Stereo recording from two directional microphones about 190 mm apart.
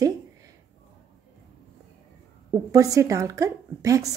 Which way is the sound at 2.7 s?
15° right (ahead or behind).